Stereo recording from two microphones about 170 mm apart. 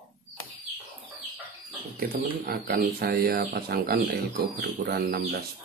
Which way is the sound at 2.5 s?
60° right (ahead or behind).